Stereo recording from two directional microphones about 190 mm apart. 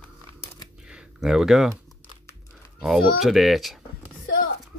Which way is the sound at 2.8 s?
5° right (ahead or behind).